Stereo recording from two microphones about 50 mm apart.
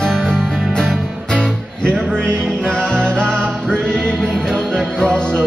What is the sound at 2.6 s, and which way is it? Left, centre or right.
Music, centre.